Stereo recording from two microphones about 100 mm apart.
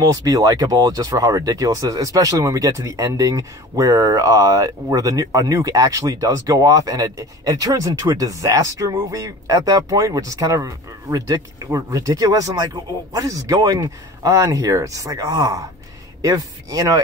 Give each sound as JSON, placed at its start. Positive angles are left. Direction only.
{"t": 0.0, "sound": "speech", "side_deg": -35}